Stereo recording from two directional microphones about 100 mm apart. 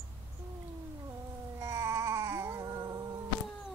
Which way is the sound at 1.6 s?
30° right (ahead or behind).